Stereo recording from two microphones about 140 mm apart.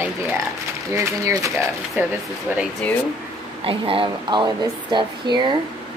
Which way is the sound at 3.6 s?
40° right (ahead or behind).